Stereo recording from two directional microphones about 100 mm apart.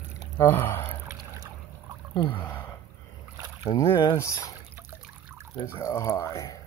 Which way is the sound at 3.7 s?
55° left (ahead or behind).